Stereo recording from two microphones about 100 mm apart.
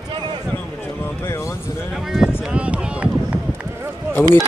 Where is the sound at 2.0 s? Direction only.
5° right (ahead or behind).